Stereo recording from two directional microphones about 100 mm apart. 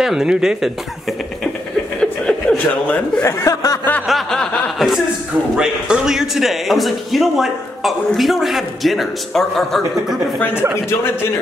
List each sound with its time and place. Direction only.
0.0 s a man's voice: 5° right (ahead or behind)
2.0 s a sound: 5° left (ahead or behind)
2.9 s speech: 25° left (ahead or behind)
4.1 s snicker: 5° left (ahead or behind)
5.6 s a man's voice: 5° right (ahead or behind)
10.9 s speech: 25° left (ahead or behind)